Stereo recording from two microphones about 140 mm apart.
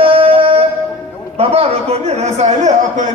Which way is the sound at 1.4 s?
45° right (ahead or behind).